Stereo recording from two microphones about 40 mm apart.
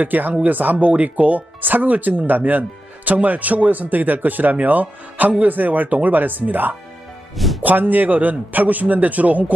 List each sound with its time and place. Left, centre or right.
0.0 s speech: right